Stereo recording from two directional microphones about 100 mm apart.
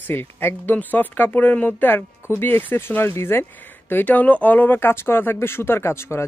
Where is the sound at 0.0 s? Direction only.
20° left (ahead or behind).